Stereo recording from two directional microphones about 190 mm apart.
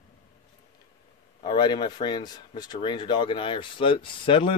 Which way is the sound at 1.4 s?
25° left (ahead or behind).